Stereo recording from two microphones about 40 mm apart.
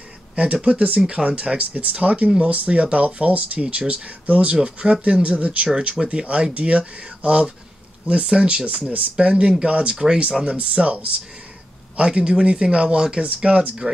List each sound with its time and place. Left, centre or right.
0.4 s speech: right
6.2 s speech: right
10.6 s speech: right